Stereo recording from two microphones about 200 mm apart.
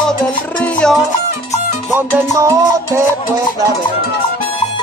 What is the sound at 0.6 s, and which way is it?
Music, 5° left (ahead or behind).